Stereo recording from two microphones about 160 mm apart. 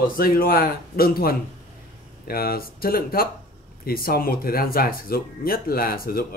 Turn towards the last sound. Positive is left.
turn(degrees=65)  # may be behind; listen again after turning